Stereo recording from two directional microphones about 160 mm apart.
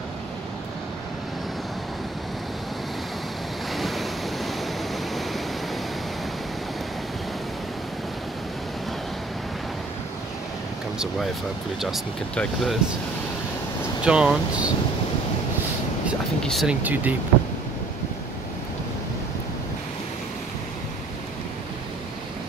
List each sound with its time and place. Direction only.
3.7 s waves: centre (ahead or behind)
11.8 s speech: centre (ahead or behind)
14.0 s speech: 5° right (ahead or behind)
16.4 s speech: centre (ahead or behind)
16.8 s speech: 10° right (ahead or behind)